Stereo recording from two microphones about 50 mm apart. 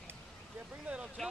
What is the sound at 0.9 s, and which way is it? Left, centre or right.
Speech, right.